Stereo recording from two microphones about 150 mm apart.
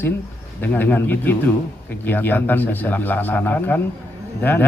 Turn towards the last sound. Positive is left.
turn(degrees=10)  # may be behind; listen again after turning